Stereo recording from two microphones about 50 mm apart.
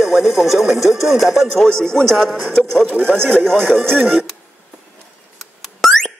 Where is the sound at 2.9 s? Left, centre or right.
Right.